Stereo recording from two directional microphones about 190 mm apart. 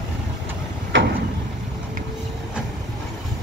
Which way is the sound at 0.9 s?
80° right.